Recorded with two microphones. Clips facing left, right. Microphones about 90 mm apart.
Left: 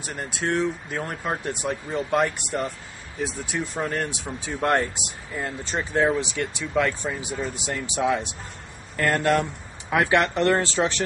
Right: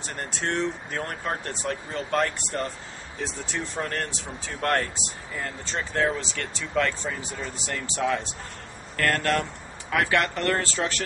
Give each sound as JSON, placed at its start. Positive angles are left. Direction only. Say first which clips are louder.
{"t": 0.0, "sound": "speech", "louder": "left 2 dB", "side_deg": 5}
{"t": 5.3, "sound": "speech", "louder": "left 3 dB", "side_deg": 15}